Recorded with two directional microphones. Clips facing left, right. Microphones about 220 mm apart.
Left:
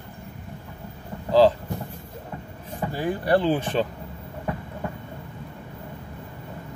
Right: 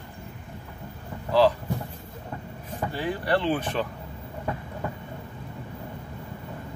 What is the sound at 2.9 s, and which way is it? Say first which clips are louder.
Speech: left 4 dB; 45° left (ahead or behind).